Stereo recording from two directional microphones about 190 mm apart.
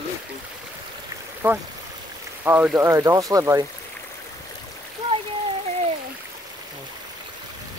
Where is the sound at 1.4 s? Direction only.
10° right (ahead or behind).